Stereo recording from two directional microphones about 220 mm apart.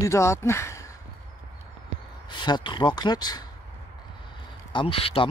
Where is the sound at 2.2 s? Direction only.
20° left (ahead or behind).